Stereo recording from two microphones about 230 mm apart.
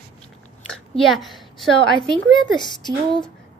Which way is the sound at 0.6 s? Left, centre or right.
Centre.